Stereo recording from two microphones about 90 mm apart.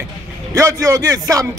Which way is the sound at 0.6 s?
35° right (ahead or behind).